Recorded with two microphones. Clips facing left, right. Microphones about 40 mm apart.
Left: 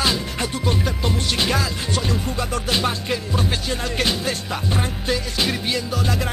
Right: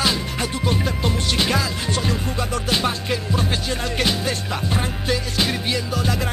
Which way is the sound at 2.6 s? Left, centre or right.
Centre.